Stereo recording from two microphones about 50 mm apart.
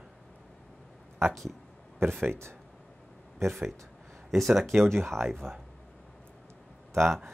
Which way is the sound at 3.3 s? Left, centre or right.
Right.